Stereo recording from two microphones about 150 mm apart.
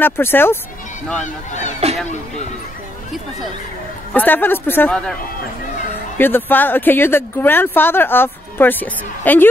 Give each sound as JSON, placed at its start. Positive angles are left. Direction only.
{"t": 0.0, "sound": "speech", "side_deg": 15}
{"t": 1.5, "sound": "speech", "side_deg": 55}
{"t": 4.1, "sound": "speech", "side_deg": 10}
{"t": 6.1, "sound": "speech", "side_deg": 15}